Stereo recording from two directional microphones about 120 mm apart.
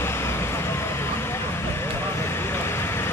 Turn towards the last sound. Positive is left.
turn(degrees=20)  # may be behind; listen again after turning